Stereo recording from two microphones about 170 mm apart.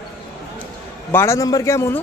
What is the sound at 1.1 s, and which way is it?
Speech, 15° left (ahead or behind).